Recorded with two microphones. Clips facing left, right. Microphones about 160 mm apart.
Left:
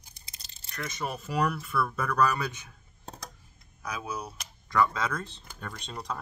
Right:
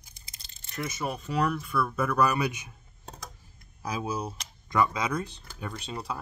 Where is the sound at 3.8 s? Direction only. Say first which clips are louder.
Right 4 dB; 30° right (ahead or behind).